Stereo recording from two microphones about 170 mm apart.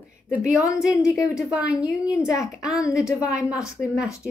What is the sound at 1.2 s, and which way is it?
A woman's voice, 5° right (ahead or behind).